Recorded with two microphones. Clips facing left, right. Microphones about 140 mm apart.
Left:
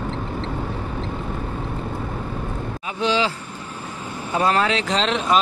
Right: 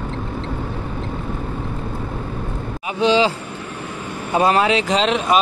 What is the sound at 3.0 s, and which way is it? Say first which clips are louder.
Speech: right 5 dB; 20° right (ahead or behind).